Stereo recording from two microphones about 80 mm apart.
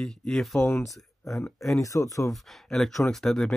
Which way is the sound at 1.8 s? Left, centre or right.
Left.